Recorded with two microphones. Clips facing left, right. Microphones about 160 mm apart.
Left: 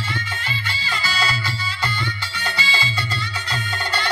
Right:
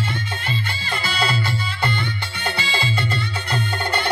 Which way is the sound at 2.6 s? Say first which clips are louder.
Even; 55° right (ahead or behind).